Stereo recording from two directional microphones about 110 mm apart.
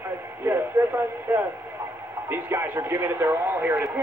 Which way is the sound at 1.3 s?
20° right (ahead or behind).